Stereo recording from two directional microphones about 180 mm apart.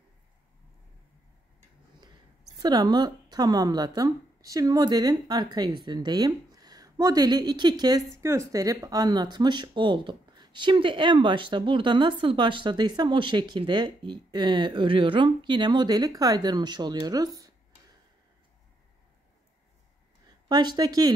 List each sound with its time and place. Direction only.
2.6 s speech: 20° right (ahead or behind)
20.4 s speech: 25° right (ahead or behind)